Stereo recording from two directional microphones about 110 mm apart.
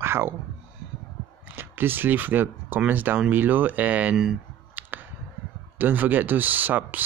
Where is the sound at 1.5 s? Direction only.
20° right (ahead or behind).